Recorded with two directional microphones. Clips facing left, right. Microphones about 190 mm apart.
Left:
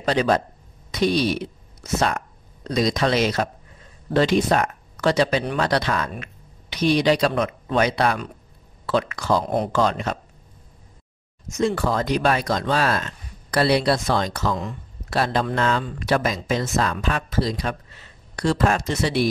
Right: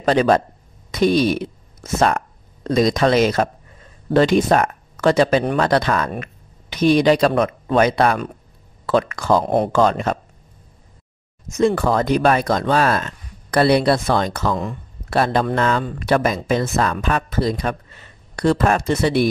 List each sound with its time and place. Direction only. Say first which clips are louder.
0.0 s speech: right 5 dB; 50° right (ahead or behind)
11.5 s speech: right 5 dB; 55° right (ahead or behind)